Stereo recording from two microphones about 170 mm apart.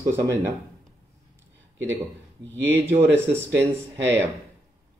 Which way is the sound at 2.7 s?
15° right (ahead or behind).